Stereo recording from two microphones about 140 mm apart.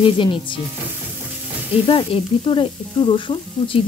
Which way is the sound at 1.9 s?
35° left (ahead or behind).